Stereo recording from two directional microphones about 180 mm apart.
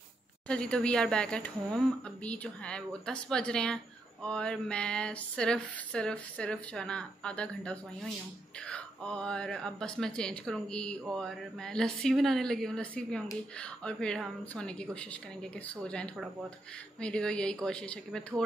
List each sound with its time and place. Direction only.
0.5 s speech: 5° left (ahead or behind)